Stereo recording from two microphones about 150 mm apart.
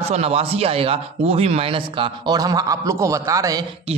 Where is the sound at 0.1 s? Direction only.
45° right (ahead or behind); by 3.6 s 20° right (ahead or behind).